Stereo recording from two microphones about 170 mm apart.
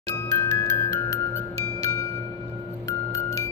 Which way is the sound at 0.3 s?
20° left (ahead or behind).